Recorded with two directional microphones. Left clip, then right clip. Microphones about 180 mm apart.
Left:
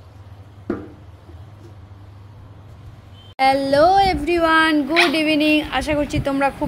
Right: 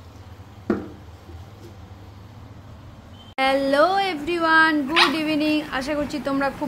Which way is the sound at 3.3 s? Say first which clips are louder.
Left 3 dB; 15° left (ahead or behind).